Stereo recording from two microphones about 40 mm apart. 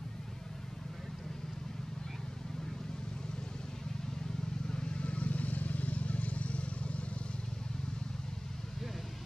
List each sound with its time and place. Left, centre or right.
4.6 s vehicle: left
5.0 s vehicle: left